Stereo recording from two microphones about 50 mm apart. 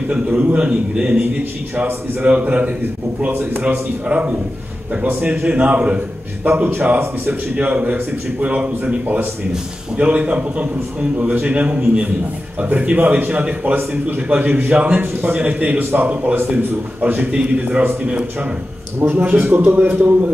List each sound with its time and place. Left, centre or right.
0.1 s a man's voice: right
2.2 s a man's voice: right
4.1 s a man's voice: right
9.0 s a man's voice: right
9.9 s a man's voice: right
18.9 s speech: right